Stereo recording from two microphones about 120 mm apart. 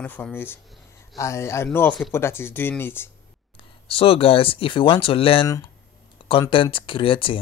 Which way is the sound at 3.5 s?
50° left (ahead or behind).